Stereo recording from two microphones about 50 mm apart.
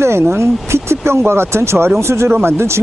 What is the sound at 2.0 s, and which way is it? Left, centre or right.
Speech, right.